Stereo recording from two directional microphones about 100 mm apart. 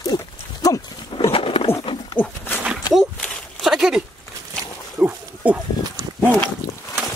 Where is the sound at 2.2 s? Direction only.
15° left (ahead or behind).